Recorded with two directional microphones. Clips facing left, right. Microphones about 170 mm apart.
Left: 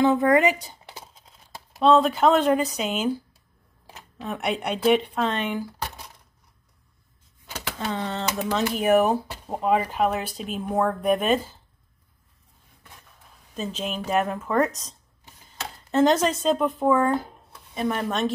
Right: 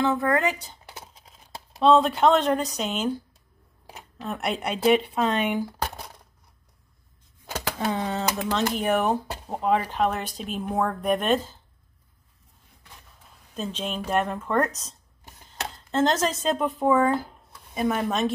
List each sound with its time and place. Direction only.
0.0 s speech: 20° left (ahead or behind)
1.8 s speech: centre (ahead or behind)
4.2 s speech: centre (ahead or behind)
7.4 s a sound: 40° right (ahead or behind)
7.9 s speech: 10° right (ahead or behind)
8.4 s speech: 5° left (ahead or behind)
13.6 s speech: 5° left (ahead or behind)